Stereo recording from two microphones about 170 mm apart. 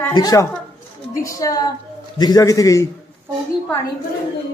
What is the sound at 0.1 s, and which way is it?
A man's voice, 20° left (ahead or behind).